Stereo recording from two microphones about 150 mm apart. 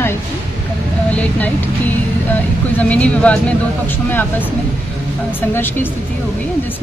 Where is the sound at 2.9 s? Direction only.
10° left (ahead or behind).